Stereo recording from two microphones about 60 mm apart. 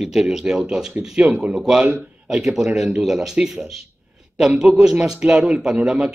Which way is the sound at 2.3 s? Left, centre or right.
Centre.